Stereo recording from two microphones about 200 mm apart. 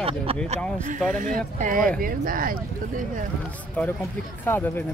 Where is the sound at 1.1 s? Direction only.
40° right (ahead or behind).